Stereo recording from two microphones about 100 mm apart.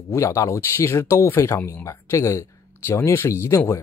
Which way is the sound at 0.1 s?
30° left (ahead or behind).